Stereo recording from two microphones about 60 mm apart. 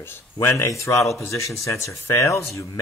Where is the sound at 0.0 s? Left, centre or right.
Left.